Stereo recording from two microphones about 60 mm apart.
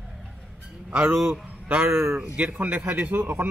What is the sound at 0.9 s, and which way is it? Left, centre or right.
A man's voice, centre.